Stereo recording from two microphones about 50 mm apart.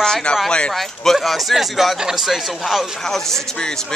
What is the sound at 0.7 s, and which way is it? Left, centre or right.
Speech, centre.